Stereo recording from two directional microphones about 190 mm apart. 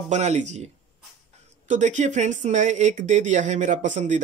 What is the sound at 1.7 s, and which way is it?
Speech, 40° right (ahead or behind).